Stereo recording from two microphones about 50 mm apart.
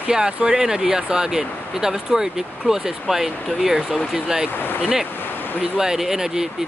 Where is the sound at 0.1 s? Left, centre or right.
Centre.